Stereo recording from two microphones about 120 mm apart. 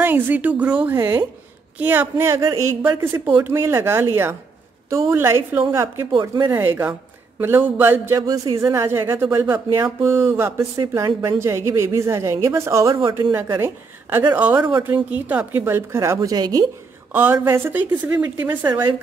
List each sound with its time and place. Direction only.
0.0 s speech: 15° right (ahead or behind)
6.2 s speech: 30° right (ahead or behind)
6.6 s a man's voice: 20° right (ahead or behind)
8.2 s speech: 30° right (ahead or behind)
10.8 s speech: 35° right (ahead or behind)
11.2 s speech: 25° right (ahead or behind)
14.1 s speech: 15° right (ahead or behind); by 16.6 s 30° right (ahead or behind)
17.1 s speech: 15° right (ahead or behind)